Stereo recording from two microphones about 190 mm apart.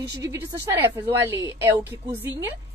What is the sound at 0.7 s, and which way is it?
A woman's voice, 10° right (ahead or behind).